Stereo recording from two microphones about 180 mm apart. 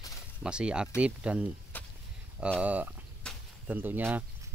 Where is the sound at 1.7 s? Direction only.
10° left (ahead or behind).